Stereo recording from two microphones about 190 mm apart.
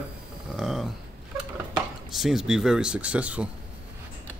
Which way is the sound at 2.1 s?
Centre (ahead or behind).